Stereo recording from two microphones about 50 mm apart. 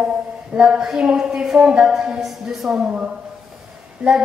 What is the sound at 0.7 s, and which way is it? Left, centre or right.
A woman's voice, centre.